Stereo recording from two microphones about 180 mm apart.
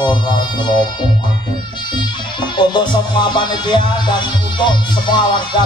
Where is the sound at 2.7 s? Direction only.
25° left (ahead or behind).